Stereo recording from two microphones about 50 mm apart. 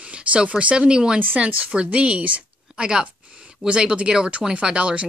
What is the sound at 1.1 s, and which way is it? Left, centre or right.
Speech, right.